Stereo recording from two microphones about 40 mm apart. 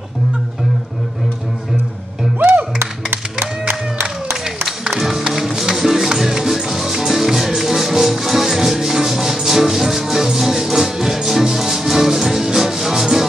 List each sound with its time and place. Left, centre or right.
2.3 s music: right
4.8 s music: centre